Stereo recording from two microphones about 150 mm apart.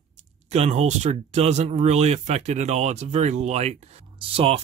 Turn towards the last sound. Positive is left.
turn(degrees=-40)  # may be behind; listen again after turning